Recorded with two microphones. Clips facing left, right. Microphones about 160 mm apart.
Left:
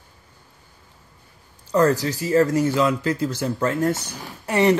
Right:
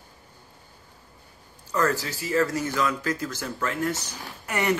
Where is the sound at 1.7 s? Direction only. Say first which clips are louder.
Left 7 dB; 35° left (ahead or behind).